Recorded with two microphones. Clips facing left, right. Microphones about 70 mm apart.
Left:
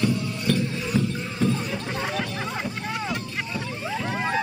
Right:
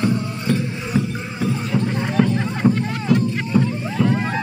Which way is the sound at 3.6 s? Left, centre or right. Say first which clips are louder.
Right 9 dB; centre.